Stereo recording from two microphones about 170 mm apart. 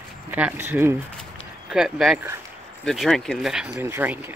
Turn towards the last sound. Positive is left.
turn(degrees=-15)  # may be behind; listen again after turning